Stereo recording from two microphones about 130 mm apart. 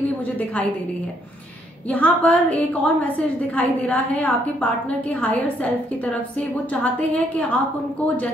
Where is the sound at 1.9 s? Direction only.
10° left (ahead or behind).